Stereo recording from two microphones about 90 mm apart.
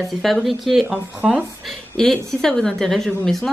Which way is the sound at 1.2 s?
10° right (ahead or behind).